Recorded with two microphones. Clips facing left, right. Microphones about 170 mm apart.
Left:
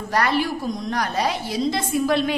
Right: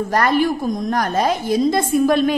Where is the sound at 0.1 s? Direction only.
50° right (ahead or behind).